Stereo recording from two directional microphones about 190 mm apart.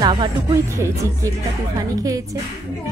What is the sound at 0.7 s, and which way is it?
Music, 15° right (ahead or behind).